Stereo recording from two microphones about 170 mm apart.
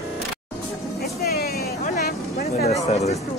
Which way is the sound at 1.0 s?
65° left (ahead or behind).